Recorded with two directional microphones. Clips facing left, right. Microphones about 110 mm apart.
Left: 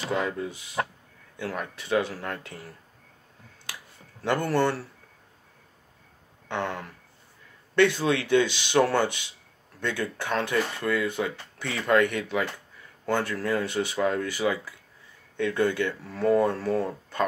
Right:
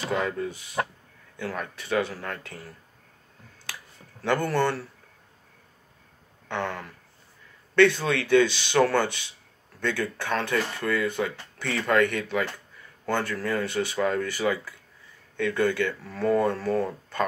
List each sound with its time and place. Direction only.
0.2 s speech: 15° left (ahead or behind)
6.5 s speech: 20° left (ahead or behind)